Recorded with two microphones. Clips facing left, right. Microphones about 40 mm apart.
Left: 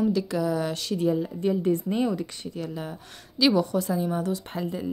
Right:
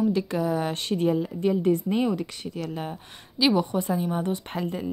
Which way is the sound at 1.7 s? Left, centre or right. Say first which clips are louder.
Right 1 dB; right.